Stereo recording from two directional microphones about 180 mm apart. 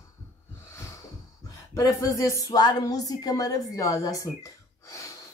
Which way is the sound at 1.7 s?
15° left (ahead or behind).